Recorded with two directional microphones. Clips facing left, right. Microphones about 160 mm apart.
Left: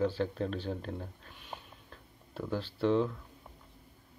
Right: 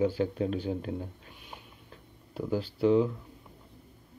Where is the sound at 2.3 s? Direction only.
10° right (ahead or behind).